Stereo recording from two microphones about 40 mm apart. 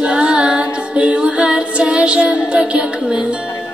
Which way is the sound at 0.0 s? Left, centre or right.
Right.